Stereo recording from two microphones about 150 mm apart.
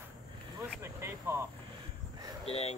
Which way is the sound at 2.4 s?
45° left (ahead or behind).